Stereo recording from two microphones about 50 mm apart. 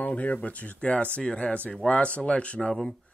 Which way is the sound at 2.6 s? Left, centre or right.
Centre.